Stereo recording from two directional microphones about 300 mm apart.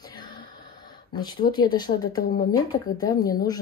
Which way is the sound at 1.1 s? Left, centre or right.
Centre.